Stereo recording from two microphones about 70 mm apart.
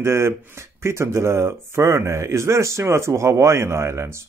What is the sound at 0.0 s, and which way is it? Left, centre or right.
A man's voice, right.